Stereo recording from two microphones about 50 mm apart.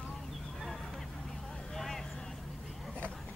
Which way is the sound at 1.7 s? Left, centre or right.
Centre.